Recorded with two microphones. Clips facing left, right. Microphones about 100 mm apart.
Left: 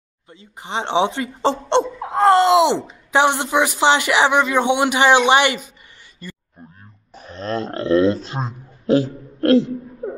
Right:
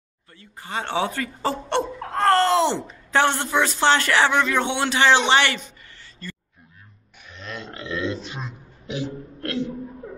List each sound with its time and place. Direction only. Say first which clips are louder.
0.3 s speech: left 4 dB; 20° left (ahead or behind)
6.2 s a sound: left 1 dB; 15° left (ahead or behind)
7.2 s speech: left 12 dB; 35° left (ahead or behind)